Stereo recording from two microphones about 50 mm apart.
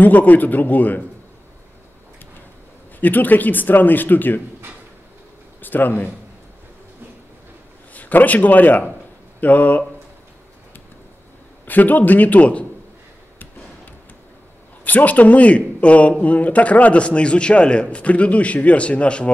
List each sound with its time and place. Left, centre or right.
0.0 s speech: left
3.0 s speech: left
5.6 s speech: left
7.9 s a man's voice: left
11.6 s speech: left
14.9 s speech: left